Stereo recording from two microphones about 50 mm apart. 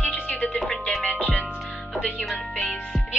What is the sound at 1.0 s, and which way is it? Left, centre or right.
Music, left.